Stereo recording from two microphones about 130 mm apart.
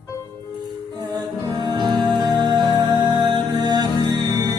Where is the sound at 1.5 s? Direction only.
35° right (ahead or behind).